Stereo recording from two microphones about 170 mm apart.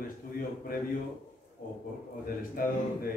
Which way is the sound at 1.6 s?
55° left (ahead or behind).